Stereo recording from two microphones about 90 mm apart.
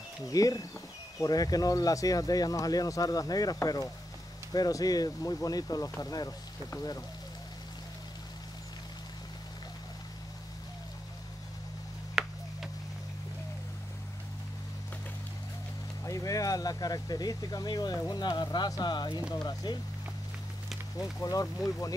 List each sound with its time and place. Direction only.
0.3 s speech: 40° left (ahead or behind)
12.2 s tick-tock: 5° right (ahead or behind)
16.0 s speech: 40° left (ahead or behind)
21.0 s speech: 40° left (ahead or behind)